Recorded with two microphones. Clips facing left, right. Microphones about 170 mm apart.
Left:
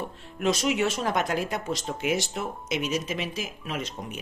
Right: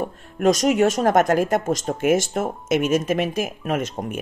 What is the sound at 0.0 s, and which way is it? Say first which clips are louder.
Speech: right 8 dB; 45° right (ahead or behind).